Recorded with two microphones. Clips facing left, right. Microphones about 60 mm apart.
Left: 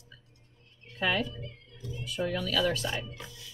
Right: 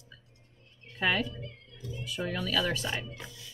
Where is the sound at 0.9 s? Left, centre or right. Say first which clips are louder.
Even; right.